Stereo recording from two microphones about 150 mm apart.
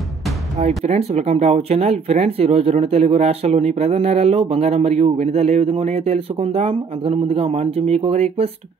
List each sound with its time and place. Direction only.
0.6 s speech: 45° right (ahead or behind)